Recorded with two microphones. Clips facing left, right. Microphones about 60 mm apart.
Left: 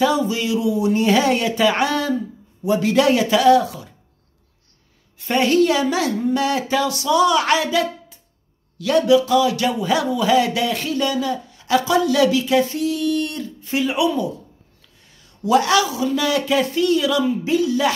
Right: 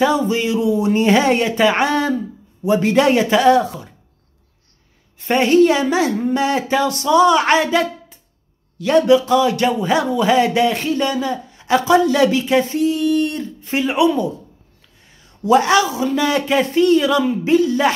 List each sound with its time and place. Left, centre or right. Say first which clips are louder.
0.0 s a man's voice: right 2 dB; right
5.2 s a woman's voice: right 4 dB; right
15.4 s a man's voice: right 3 dB; right